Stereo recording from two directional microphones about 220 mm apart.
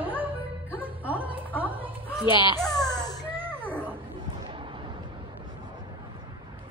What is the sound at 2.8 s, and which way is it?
Baby cry, 15° left (ahead or behind).